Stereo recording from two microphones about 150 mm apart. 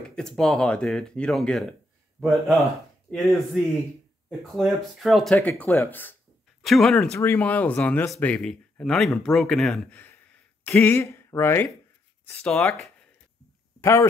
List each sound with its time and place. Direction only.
0.1 s speech: 5° left (ahead or behind)
6.6 s speech: centre (ahead or behind)
7.2 s speech: 15° left (ahead or behind)
13.7 s a sound: 20° left (ahead or behind)